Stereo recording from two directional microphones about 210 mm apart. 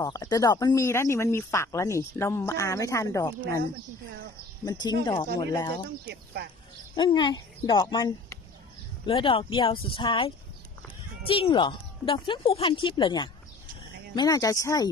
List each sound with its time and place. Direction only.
0.0 s speech: 15° left (ahead or behind)
4.6 s a woman's voice: 20° left (ahead or behind)
6.0 s speech: 50° right (ahead or behind)
7.0 s a woman's voice: 20° left (ahead or behind)